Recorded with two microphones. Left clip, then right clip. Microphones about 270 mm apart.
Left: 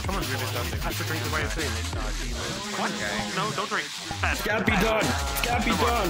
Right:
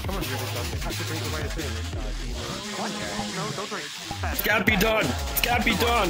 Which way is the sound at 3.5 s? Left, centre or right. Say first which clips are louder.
Left 4 dB; left.